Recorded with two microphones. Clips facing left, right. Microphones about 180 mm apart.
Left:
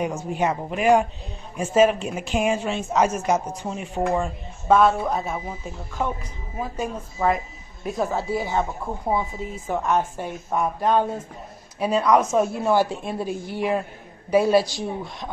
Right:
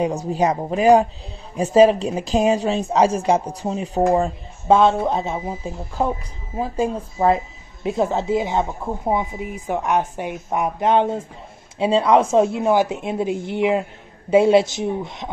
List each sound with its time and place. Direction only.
0.0 s speech: 35° right (ahead or behind); by 15.2 s 20° right (ahead or behind)